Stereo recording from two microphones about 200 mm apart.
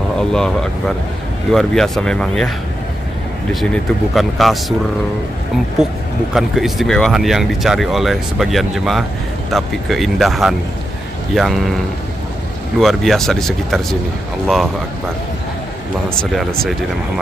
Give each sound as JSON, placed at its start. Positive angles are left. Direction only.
{"t": 0.3, "sound": "speech", "side_deg": 5}
{"t": 3.7, "sound": "speech", "side_deg": 0}
{"t": 5.8, "sound": "speech", "side_deg": 0}
{"t": 12.7, "sound": "speech", "side_deg": 0}